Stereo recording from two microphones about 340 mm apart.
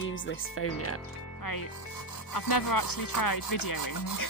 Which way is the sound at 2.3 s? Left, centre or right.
Left.